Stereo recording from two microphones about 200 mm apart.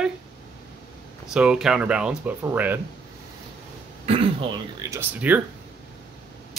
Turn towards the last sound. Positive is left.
turn(degrees=-10)  # may be behind; listen again after turning